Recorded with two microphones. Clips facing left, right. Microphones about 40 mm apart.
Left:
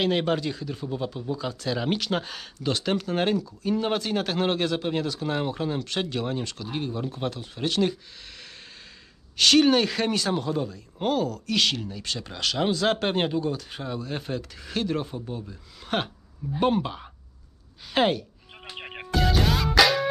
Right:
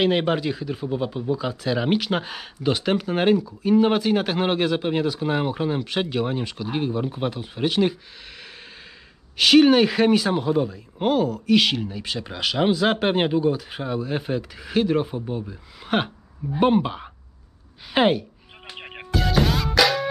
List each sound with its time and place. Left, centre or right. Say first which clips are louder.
0.0 s speech: right 4 dB; centre
9.4 s speech: right 4 dB; centre
18.8 s music: even; centre